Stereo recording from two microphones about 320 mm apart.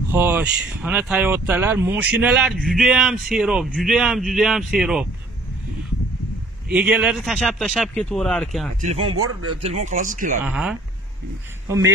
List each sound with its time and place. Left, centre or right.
0.1 s speech: centre
6.7 s speech: centre
8.8 s speech: centre
9.1 s speech: right
9.6 s speech: centre
10.4 s speech: centre